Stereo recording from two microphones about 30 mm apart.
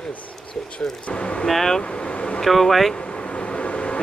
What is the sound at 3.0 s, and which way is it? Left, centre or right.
Vehicle, left.